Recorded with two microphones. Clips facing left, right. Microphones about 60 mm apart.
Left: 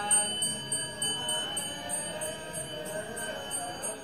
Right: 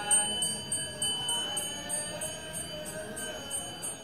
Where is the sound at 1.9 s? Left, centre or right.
Left.